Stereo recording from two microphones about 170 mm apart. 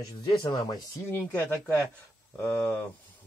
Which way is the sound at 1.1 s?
10° left (ahead or behind).